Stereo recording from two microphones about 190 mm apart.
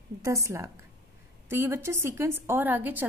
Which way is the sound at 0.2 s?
15° right (ahead or behind).